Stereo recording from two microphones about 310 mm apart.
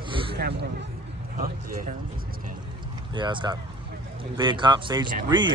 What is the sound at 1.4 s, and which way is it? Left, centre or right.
Speech, right.